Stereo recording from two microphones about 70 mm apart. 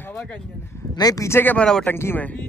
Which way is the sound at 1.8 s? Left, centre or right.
Left.